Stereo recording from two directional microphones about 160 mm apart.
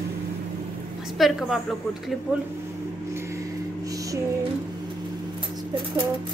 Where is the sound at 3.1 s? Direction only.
20° right (ahead or behind).